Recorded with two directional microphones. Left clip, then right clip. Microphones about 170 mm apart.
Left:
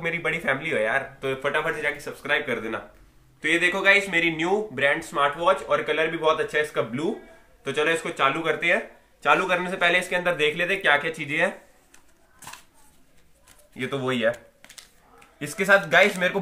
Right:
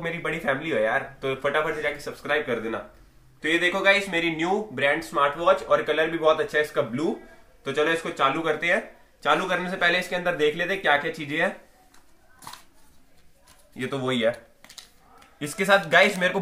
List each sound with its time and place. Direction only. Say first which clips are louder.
0.0 s a man's voice: left 2 dB; 5° left (ahead or behind)
13.7 s a man's voice: even; 5° left (ahead or behind)
15.3 s a man's voice: left 1 dB; 5° right (ahead or behind)